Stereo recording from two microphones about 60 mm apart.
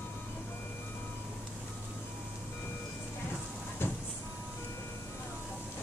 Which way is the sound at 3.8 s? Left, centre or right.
Left.